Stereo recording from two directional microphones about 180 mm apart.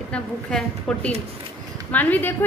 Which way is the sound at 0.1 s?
5° left (ahead or behind).